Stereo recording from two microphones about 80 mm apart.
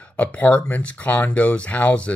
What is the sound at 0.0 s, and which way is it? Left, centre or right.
Speech, centre.